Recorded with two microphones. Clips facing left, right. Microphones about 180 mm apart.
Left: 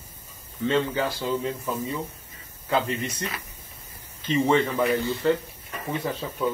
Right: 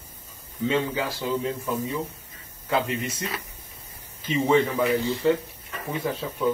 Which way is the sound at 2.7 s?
5° right (ahead or behind).